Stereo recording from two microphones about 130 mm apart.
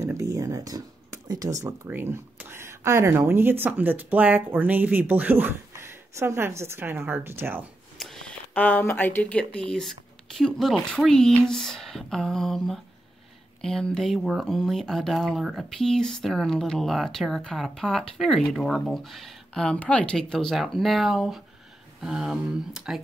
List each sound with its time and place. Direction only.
0.0 s a sound: 25° right (ahead or behind)
1.9 s a woman's voice: 15° right (ahead or behind)
8.0 s speech: 5° left (ahead or behind)